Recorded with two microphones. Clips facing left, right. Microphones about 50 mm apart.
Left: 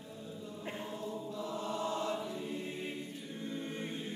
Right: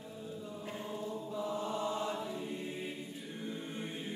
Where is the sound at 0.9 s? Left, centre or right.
Centre.